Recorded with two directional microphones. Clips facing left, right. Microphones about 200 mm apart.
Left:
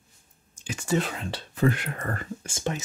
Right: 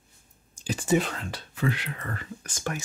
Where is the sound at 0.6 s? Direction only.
35° right (ahead or behind).